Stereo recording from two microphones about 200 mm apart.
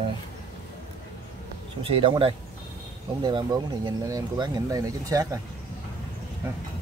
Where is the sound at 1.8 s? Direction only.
25° right (ahead or behind).